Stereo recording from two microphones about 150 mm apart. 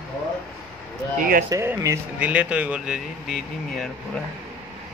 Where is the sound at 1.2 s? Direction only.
70° right (ahead or behind).